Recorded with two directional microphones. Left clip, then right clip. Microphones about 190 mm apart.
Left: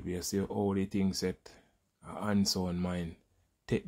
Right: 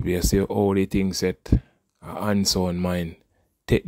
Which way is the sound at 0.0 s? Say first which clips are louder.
Right 13 dB; 45° right (ahead or behind).